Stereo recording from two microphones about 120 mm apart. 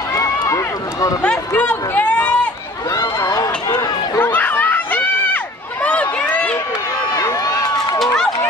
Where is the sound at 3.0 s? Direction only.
30° left (ahead or behind).